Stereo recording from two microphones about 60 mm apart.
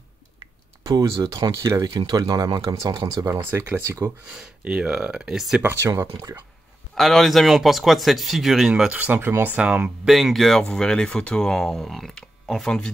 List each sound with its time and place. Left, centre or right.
0.8 s speech: right
1.8 s speech: right
3.3 s speech: right
4.6 s speech: right
5.3 s speech: centre
5.6 s speech: right
6.3 s speech: right
7.0 s speech: centre
8.9 s speech: right
9.6 s speech: centre
10.0 s speech: centre